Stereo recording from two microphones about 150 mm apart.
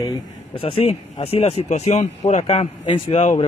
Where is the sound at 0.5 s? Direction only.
40° left (ahead or behind).